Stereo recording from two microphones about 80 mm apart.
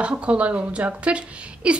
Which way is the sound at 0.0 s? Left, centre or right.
Centre.